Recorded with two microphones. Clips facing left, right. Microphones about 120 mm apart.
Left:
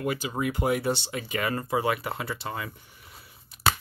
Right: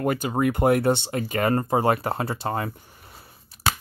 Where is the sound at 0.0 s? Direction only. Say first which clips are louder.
Right 6 dB; 50° right (ahead or behind).